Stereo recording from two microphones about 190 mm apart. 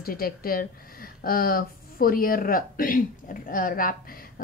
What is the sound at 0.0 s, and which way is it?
A woman's voice, 50° left (ahead or behind).